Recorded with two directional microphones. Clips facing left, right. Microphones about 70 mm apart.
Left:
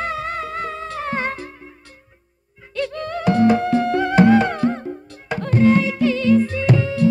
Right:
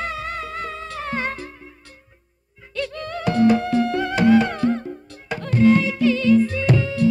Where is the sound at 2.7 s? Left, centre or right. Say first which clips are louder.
Left 3 dB; left.